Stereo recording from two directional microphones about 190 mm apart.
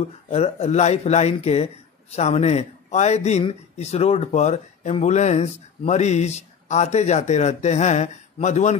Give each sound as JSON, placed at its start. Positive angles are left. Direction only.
{"t": 0.3, "sound": "a man's voice", "side_deg": 35}